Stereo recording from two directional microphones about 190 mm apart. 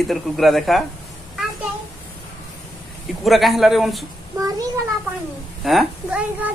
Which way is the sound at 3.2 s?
Centre (ahead or behind).